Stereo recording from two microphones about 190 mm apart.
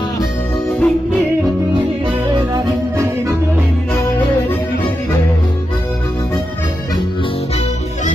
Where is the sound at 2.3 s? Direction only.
15° right (ahead or behind).